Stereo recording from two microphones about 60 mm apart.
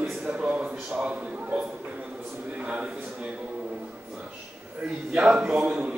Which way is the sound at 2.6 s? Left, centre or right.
Centre.